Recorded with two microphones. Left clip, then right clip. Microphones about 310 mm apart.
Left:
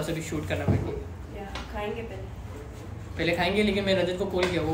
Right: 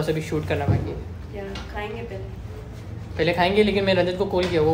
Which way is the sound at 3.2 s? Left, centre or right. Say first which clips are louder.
Right 6 dB; centre.